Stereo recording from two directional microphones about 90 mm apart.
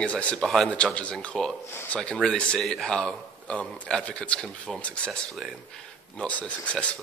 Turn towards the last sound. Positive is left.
turn(degrees=10)  # may be behind; listen again after turning